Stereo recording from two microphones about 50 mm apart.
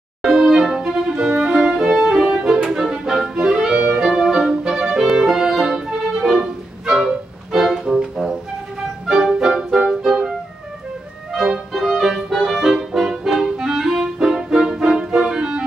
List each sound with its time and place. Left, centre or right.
0.2 s music: centre
1.0 s music: centre
11.7 s music: centre
13.5 s clarinet: centre